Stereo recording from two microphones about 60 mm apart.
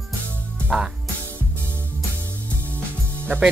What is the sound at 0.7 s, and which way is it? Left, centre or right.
Speech, centre.